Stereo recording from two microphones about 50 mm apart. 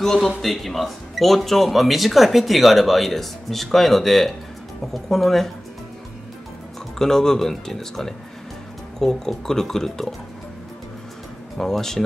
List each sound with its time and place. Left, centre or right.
0.0 s speech: centre
7.0 s speech: centre
11.5 s speech: centre